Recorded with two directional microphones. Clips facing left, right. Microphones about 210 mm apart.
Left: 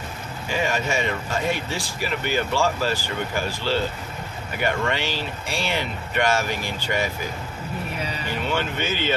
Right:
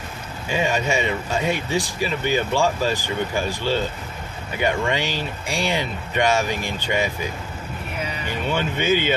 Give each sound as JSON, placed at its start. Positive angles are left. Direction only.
{"t": 0.5, "sound": "speech", "side_deg": -20}
{"t": 8.5, "sound": "speech", "side_deg": -15}